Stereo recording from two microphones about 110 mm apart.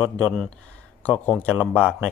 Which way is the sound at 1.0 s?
15° left (ahead or behind).